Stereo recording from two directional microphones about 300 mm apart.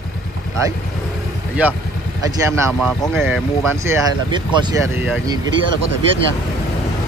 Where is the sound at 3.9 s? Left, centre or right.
Centre.